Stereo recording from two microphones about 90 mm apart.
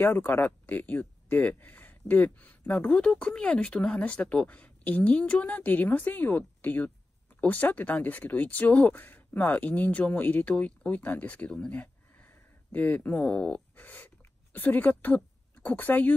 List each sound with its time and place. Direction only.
0.0 s speech: 25° left (ahead or behind)
2.9 s speech: 10° left (ahead or behind)